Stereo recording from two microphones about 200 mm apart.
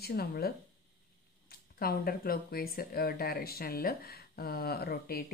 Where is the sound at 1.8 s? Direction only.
50° left (ahead or behind).